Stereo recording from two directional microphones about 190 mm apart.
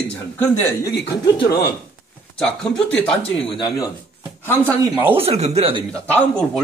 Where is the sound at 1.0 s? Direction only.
25° left (ahead or behind).